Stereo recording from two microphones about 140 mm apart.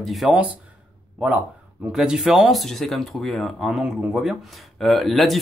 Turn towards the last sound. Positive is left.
turn(degrees=0)  # may be behind; listen again after turning